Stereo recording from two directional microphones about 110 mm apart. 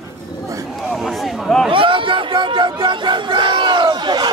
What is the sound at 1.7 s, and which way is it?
Crowd, 50° right (ahead or behind).